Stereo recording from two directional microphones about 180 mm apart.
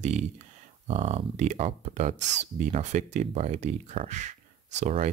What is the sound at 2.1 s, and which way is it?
Speech, 80° right.